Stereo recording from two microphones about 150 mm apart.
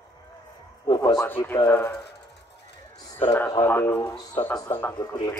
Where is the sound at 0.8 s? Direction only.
25° left (ahead or behind).